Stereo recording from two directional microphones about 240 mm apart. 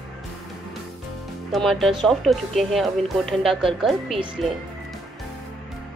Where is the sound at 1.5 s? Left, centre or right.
Centre.